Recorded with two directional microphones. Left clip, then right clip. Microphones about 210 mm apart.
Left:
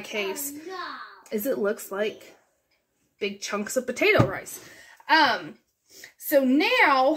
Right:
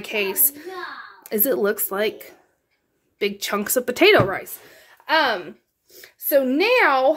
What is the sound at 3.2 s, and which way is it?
Speech, 50° right (ahead or behind).